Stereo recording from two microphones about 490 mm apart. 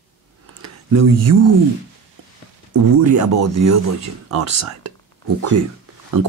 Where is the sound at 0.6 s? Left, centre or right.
Right.